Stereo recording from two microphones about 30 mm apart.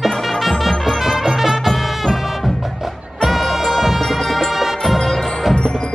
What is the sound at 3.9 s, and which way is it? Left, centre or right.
Music, centre.